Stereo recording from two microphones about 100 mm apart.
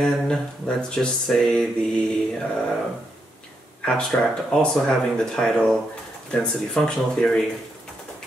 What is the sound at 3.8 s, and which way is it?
Speech, 10° left (ahead or behind).